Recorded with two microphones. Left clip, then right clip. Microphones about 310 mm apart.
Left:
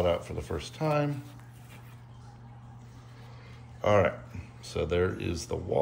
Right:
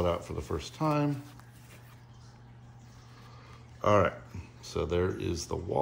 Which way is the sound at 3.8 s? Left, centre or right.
Right.